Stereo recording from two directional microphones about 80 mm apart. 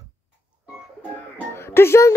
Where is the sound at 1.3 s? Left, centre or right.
Left.